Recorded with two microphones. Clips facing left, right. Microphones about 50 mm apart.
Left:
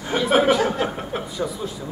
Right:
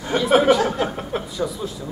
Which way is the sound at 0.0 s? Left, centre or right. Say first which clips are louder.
Right 2 dB; centre.